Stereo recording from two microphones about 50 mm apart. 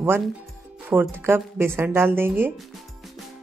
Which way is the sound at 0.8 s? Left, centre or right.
Right.